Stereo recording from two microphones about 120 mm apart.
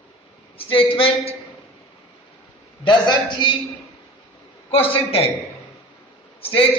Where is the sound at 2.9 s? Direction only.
35° left (ahead or behind).